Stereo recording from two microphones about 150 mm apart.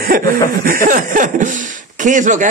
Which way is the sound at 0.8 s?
65° right (ahead or behind).